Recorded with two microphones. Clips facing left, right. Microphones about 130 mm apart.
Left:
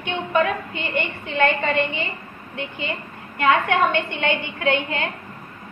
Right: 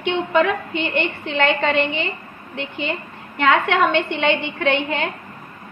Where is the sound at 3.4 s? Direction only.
90° right.